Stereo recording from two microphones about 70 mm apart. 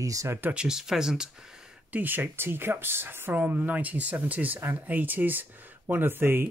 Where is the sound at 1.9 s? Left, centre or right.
Right.